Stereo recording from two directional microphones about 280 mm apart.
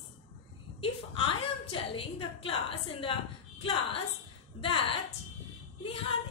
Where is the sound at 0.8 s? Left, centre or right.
Centre.